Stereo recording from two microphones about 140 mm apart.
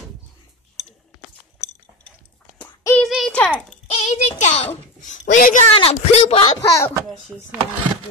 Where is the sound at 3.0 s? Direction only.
Centre (ahead or behind).